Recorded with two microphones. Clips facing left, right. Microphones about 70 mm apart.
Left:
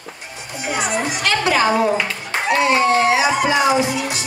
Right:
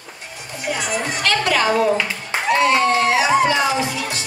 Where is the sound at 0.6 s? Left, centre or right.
Centre.